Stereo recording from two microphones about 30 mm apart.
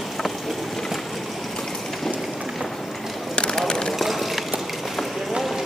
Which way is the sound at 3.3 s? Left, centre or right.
Left.